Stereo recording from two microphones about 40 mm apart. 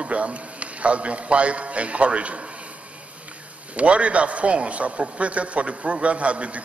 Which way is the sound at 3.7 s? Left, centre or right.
Right.